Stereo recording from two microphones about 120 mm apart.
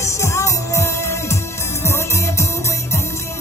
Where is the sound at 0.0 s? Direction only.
25° left (ahead or behind).